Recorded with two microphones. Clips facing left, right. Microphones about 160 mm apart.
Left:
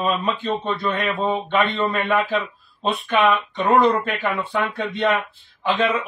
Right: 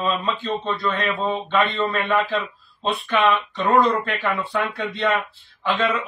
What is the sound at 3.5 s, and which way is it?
A man's voice, 15° left (ahead or behind).